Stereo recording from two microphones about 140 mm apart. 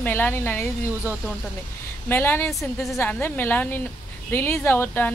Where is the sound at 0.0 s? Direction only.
15° left (ahead or behind).